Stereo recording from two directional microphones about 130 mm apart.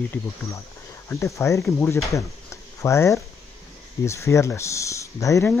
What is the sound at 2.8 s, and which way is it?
Speech, 20° left (ahead or behind).